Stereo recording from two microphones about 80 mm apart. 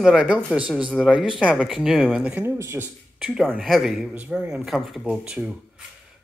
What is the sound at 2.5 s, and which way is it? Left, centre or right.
Speech, right.